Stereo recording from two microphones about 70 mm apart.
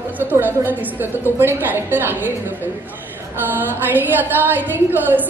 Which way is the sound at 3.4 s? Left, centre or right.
Right.